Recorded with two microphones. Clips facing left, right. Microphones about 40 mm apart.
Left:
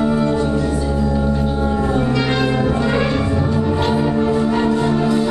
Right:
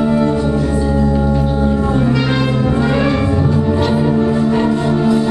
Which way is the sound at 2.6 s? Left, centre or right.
Centre.